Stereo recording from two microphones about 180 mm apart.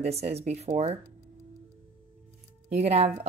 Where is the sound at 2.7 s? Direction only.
35° right (ahead or behind).